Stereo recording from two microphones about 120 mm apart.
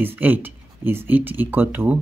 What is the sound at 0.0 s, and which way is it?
Speech, 15° right (ahead or behind).